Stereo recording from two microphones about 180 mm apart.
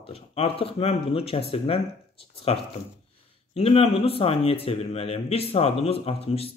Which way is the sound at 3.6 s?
35° left (ahead or behind).